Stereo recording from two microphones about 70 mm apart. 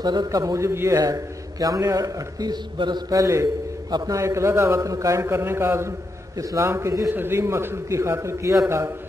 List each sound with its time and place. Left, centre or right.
0.0 s a man's voice: right
0.9 s a man's voice: right
2.5 s mantra: right
3.2 s a man's voice: right